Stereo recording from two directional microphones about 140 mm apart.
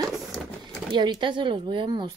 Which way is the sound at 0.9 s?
35° right (ahead or behind).